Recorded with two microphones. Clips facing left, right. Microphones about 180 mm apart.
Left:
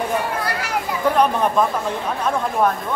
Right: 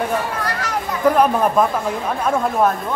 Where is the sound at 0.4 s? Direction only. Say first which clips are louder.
Even; 10° left (ahead or behind).